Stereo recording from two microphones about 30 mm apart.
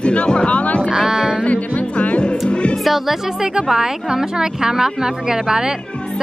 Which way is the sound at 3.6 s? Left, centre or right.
Centre.